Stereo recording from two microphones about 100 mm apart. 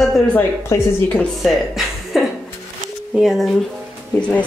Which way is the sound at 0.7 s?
35° left (ahead or behind).